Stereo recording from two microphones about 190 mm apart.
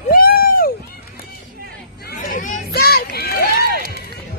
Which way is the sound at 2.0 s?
45° left (ahead or behind).